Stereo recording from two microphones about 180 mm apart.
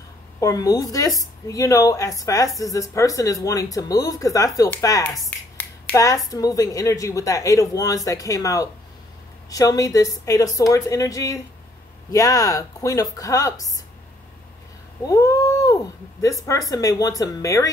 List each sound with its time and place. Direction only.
0.4 s a woman's voice: 20° left (ahead or behind)
15.0 s a woman's voice: 20° left (ahead or behind)